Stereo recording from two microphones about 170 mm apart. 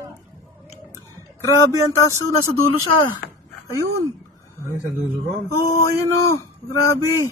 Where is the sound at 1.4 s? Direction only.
15° left (ahead or behind).